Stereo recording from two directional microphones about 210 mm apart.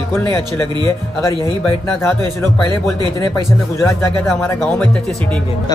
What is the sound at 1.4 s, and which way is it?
Speech, 15° left (ahead or behind).